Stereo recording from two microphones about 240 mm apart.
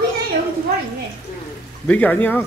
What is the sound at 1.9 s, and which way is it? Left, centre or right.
Speech, centre.